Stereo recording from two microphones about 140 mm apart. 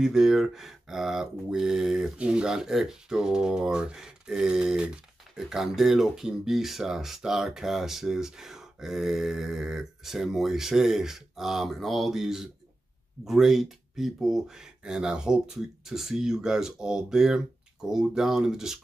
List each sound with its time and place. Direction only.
0.0 s speech: 5° right (ahead or behind)